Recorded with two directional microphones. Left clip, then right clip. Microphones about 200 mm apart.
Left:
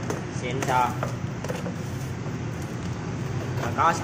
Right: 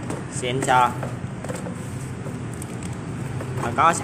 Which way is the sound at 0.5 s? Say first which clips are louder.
Right 5 dB; 50° right (ahead or behind).